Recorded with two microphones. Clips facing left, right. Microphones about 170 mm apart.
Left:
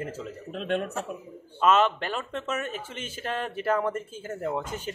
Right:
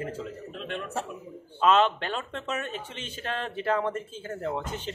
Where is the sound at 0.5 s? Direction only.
40° left (ahead or behind).